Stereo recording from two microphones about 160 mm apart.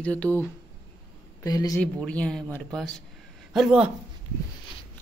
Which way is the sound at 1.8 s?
10° left (ahead or behind).